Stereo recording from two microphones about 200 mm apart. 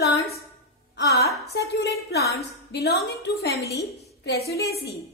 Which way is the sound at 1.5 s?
55° left (ahead or behind).